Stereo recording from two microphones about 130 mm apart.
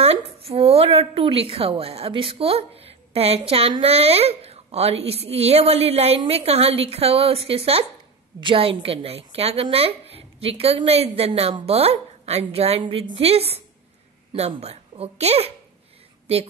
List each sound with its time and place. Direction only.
0.0 s a woman's voice: 50° right (ahead or behind)
12.8 s a woman's voice: 40° right (ahead or behind)